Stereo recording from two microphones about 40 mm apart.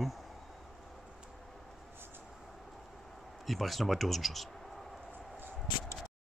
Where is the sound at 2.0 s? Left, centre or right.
Right.